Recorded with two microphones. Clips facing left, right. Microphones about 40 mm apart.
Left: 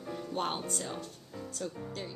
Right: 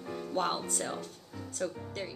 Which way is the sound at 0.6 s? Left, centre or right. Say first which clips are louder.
Right 2 dB; right.